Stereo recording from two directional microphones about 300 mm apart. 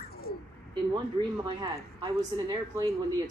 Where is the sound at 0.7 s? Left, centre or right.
Centre.